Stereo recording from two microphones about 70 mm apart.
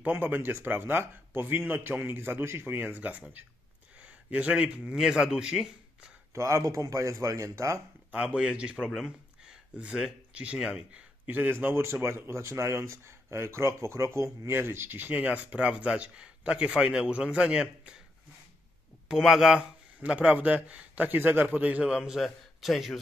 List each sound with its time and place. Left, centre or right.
0.0 s a man's voice: right; by 6.1 s centre
6.3 s speech: right
8.1 s speech: centre
19.0 s speech: centre
20.0 s a man's voice: centre